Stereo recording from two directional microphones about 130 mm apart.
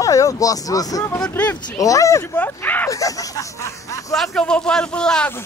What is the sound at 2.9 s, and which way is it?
Speech, 25° left (ahead or behind).